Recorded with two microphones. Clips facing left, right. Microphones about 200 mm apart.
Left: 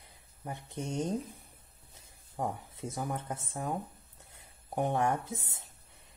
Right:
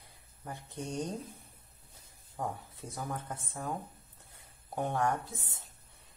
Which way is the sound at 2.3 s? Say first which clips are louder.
Left 2 dB; 20° left (ahead or behind).